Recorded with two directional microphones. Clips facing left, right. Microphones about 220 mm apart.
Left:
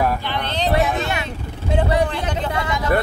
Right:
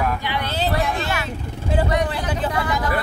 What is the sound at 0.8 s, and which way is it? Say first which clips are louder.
Vehicle: left 2 dB; centre (ahead or behind).